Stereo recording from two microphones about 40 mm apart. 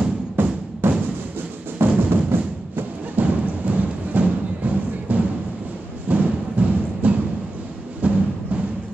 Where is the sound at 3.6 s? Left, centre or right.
Right.